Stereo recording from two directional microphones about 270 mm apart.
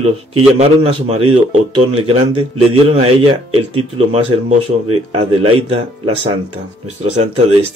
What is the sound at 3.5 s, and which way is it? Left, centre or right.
Speech, right.